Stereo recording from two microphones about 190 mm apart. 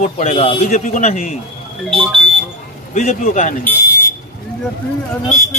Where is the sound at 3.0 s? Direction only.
45° left (ahead or behind).